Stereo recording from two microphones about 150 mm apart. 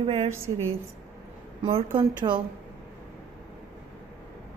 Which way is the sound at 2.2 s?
35° right (ahead or behind).